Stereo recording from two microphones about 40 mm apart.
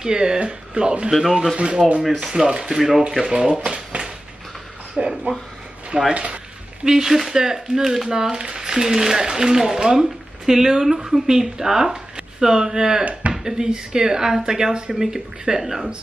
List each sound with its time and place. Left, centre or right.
0.0 s speech: centre
1.3 s speech: centre
2.3 s speech: right
6.1 s speech: right
6.8 s speech: centre